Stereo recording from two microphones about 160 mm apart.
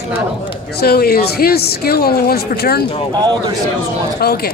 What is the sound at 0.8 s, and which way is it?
Speech, 75° left (ahead or behind).